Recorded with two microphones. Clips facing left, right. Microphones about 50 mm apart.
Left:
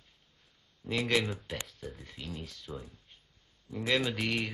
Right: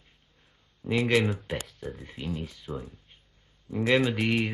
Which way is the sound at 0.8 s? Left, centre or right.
Centre.